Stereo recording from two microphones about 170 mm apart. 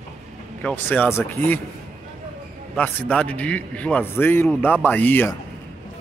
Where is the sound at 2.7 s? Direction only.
5° left (ahead or behind).